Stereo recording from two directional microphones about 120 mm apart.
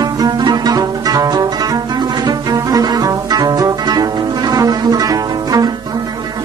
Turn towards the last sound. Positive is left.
turn(degrees=-30)  # may be behind; listen again after turning